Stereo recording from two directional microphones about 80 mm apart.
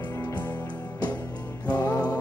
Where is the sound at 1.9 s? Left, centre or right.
Left.